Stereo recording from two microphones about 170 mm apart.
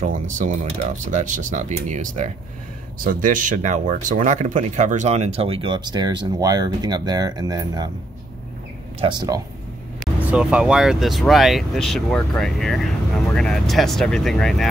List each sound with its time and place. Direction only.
0.0 s speech: 50° right (ahead or behind); by 7.9 s 25° right (ahead or behind)
9.0 s speech: 25° right (ahead or behind)
10.2 s speech: 5° right (ahead or behind)